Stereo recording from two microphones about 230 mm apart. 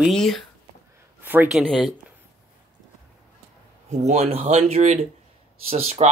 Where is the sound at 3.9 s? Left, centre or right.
Right.